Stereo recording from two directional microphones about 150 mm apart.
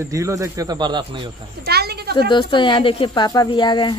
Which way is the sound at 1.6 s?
90° right.